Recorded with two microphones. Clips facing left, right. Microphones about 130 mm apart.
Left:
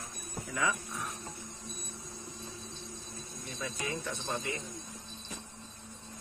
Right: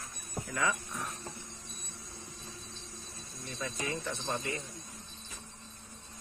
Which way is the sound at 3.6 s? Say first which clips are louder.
Right 1 dB; 5° left (ahead or behind).